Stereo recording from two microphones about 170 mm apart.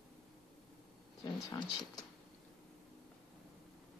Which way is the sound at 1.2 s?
20° left (ahead or behind).